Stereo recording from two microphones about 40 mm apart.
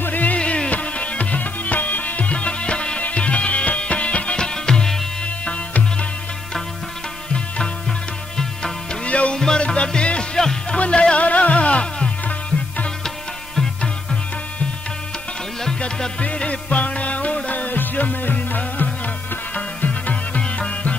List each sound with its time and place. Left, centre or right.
0.0 s music: left
0.4 s music: left
5.4 s music: left
7.3 s music: left
9.0 s music: left
9.3 s music: centre
11.1 s music: left
16.2 s music: left
17.7 s music: left
19.5 s music: left